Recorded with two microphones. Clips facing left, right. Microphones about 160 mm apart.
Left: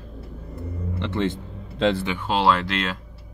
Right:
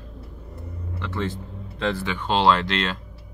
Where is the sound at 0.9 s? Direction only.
25° left (ahead or behind).